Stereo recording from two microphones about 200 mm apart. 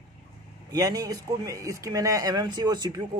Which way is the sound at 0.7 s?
20° right (ahead or behind).